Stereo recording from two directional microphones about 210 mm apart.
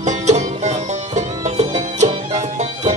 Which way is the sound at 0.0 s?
35° right (ahead or behind).